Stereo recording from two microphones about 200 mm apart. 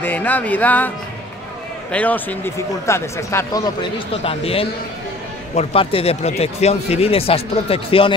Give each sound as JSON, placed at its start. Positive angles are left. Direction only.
{"t": 0.0, "sound": "speech", "side_deg": 10}
{"t": 4.1, "sound": "speech", "side_deg": 30}